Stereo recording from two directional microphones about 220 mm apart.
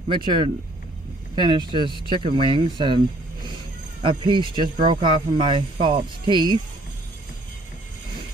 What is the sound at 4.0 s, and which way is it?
Speech, 20° right (ahead or behind).